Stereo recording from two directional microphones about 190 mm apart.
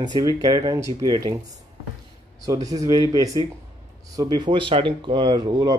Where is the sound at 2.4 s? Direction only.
20° right (ahead or behind).